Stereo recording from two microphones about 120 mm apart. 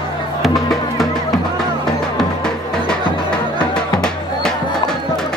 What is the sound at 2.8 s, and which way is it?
Music, 5° left (ahead or behind).